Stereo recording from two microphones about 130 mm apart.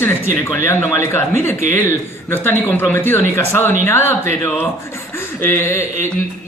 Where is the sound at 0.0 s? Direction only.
15° left (ahead or behind).